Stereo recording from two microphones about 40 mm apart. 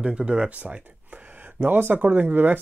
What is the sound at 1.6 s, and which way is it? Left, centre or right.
Speech, right.